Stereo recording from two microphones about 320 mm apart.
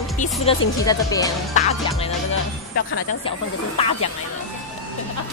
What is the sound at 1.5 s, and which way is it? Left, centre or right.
Music, centre.